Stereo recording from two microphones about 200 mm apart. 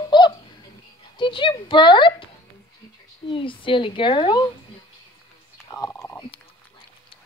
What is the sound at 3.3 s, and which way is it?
A woman's voice, 25° left (ahead or behind).